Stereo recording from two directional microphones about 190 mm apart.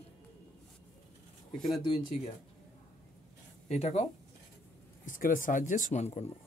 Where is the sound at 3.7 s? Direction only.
35° left (ahead or behind).